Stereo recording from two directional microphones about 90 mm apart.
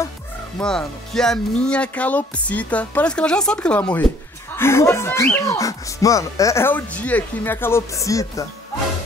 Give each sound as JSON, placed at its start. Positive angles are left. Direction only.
{"t": 0.6, "sound": "speech", "side_deg": 5}
{"t": 4.6, "sound": "speech", "side_deg": 30}
{"t": 6.7, "sound": "speech", "side_deg": 15}